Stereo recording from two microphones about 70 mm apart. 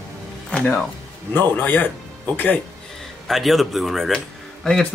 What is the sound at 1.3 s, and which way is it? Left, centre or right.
A man's voice, left.